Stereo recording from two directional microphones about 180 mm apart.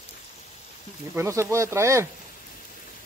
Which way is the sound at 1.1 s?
15° right (ahead or behind).